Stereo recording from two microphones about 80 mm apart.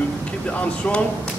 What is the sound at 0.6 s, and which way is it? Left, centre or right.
Speech, centre.